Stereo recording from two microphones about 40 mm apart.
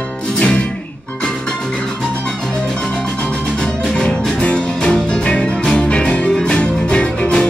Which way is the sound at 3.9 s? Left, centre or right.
Centre.